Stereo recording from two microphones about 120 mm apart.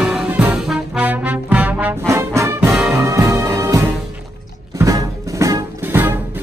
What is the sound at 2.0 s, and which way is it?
Music, 25° right (ahead or behind).